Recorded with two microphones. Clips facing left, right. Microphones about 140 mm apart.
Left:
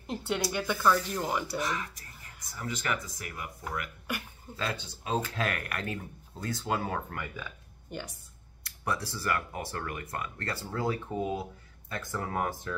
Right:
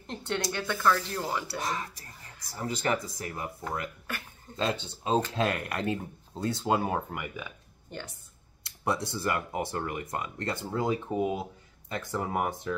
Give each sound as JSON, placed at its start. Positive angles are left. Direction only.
{"t": 0.0, "sound": "a woman's voice", "side_deg": 5}
{"t": 1.6, "sound": "speech", "side_deg": -35}
{"t": 4.1, "sound": "a sound", "side_deg": 15}
{"t": 4.6, "sound": "speech", "side_deg": -25}
{"t": 7.9, "sound": "speech", "side_deg": 10}
{"t": 8.6, "sound": "speech", "side_deg": -25}